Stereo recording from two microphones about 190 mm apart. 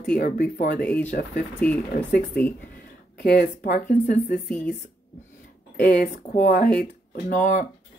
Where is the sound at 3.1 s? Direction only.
55° left (ahead or behind).